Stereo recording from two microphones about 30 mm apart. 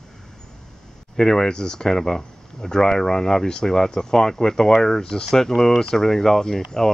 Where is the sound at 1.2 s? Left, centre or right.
Centre.